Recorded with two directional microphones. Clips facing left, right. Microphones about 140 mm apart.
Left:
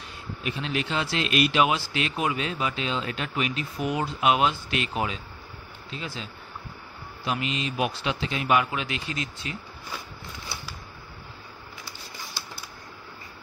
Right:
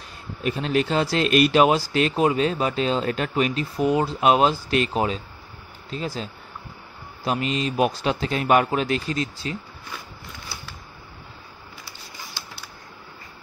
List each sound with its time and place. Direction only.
0.4 s speech: 40° right (ahead or behind)
7.2 s speech: 40° right (ahead or behind)